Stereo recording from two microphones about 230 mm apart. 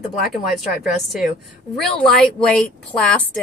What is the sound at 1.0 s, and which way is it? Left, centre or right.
A woman's voice, centre.